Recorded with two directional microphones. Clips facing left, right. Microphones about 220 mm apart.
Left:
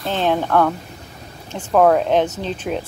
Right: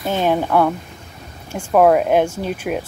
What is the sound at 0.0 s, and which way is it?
Speech, 10° right (ahead or behind).